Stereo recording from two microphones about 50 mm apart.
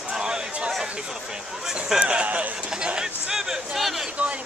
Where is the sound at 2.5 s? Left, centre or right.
Centre.